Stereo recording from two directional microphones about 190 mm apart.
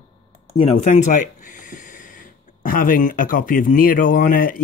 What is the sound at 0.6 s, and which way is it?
Speech, 35° left (ahead or behind).